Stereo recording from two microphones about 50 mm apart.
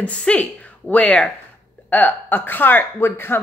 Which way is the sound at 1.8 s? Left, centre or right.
Left.